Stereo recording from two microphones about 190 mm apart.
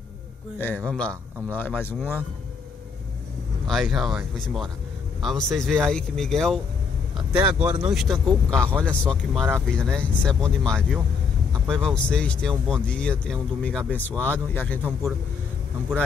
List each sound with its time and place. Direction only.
0.6 s a man's voice: 10° left (ahead or behind)
3.6 s speech: centre (ahead or behind)
7.2 s speech: 25° right (ahead or behind)
7.8 s speech: centre (ahead or behind)
8.5 s speech: 15° right (ahead or behind)
8.8 s a man's voice: 5° left (ahead or behind)